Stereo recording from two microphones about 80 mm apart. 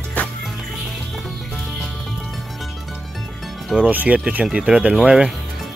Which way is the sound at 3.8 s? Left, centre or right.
Centre.